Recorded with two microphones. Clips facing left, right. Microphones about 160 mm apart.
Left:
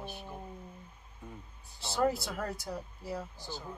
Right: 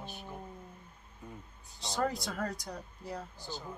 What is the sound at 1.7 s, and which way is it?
A man's voice, 5° left (ahead or behind).